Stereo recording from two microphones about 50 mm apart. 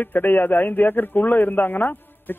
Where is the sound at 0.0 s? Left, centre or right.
Left.